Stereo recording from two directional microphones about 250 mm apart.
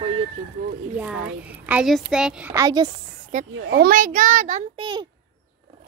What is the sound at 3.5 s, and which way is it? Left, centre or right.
A child's voice, right.